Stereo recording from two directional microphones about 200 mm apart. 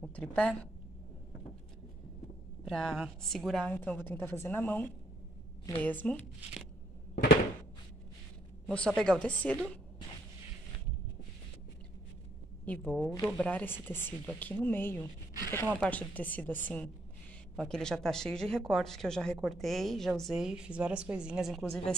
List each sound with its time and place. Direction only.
0.0 s a woman's voice: 5° left (ahead or behind)
2.6 s a woman's voice: centre (ahead or behind)
8.7 s speech: 5° left (ahead or behind)
12.6 s a woman's voice: 5° left (ahead or behind)